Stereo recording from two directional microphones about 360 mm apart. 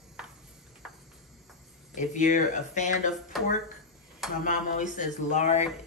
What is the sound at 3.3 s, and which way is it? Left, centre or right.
Speech, centre.